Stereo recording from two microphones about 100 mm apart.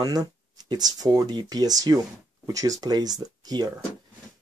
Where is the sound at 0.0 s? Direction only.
40° right (ahead or behind).